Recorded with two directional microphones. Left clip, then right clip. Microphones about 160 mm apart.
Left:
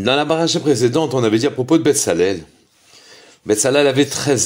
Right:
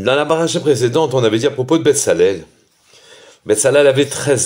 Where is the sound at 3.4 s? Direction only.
30° left (ahead or behind).